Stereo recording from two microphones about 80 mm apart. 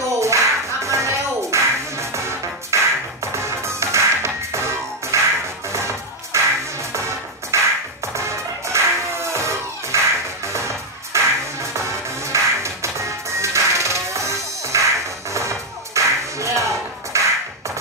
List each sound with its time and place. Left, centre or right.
0.0 s music: right